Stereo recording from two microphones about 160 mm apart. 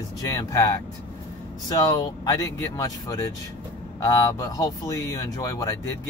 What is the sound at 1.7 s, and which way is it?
Speech, 25° left (ahead or behind).